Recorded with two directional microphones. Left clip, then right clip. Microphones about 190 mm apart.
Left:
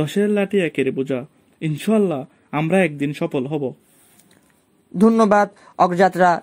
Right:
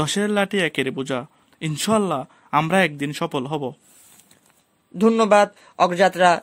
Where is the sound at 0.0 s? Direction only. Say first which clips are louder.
Left 1 dB; 40° right (ahead or behind).